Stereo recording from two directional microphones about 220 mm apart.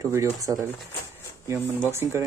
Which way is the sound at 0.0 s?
15° right (ahead or behind).